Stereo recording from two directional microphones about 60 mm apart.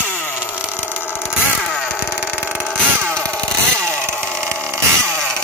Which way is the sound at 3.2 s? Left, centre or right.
Centre.